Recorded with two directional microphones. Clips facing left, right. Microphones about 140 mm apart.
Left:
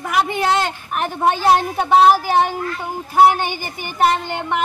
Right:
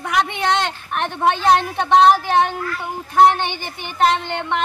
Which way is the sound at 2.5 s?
20° left (ahead or behind).